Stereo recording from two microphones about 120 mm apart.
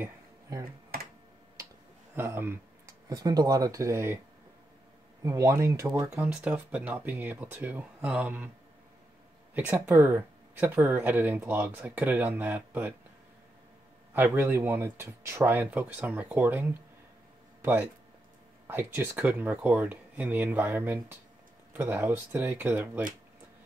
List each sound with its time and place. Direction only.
0.0 s a sound: 25° right (ahead or behind)
2.1 s a sound: 20° right (ahead or behind)
3.1 s speech: 35° right (ahead or behind)
5.2 s speech: 25° right (ahead or behind)
6.1 s speech: 15° right (ahead or behind)
9.5 s speech: 20° right (ahead or behind)
14.1 s speech: 15° right (ahead or behind)
17.6 s a sound: 20° right (ahead or behind)
18.7 s speech: 15° right (ahead or behind)